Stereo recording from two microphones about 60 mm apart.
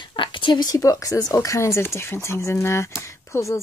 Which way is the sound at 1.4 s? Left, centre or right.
Left.